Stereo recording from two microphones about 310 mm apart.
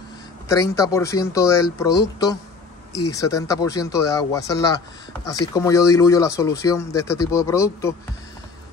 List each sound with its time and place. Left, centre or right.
0.5 s speech: centre